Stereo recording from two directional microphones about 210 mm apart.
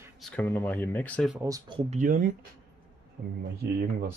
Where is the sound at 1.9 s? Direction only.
40° right (ahead or behind).